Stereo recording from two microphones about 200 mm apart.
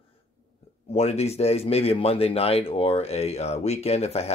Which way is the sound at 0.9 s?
30° left (ahead or behind).